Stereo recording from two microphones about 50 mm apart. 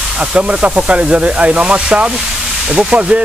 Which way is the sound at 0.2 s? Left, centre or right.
Right.